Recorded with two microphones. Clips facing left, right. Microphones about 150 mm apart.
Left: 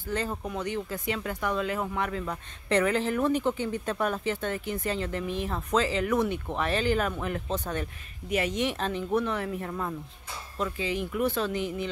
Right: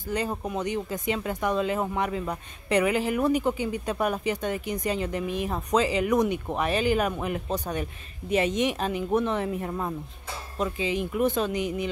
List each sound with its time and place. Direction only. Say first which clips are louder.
0.1 s speech: right 3 dB; 15° right (ahead or behind)
8.3 s speech: right 4 dB; 25° right (ahead or behind)